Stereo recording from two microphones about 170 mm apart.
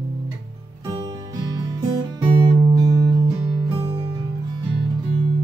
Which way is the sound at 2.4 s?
20° right (ahead or behind).